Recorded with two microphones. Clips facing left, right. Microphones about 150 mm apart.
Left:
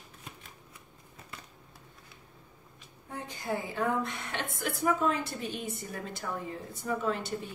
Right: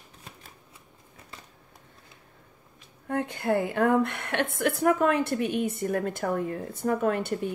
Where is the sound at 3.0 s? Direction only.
65° right (ahead or behind).